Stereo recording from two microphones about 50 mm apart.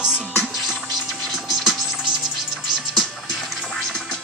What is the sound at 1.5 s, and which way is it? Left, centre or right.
Music, centre.